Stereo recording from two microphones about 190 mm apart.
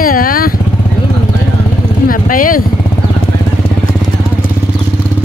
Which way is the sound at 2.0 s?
45° left (ahead or behind).